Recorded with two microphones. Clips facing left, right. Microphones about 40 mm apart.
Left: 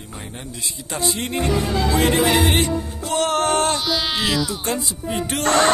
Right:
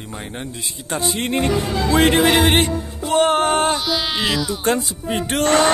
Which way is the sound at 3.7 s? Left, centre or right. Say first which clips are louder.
Right 1 dB; centre.